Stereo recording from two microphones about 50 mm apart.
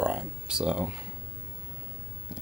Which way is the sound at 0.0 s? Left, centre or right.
Centre.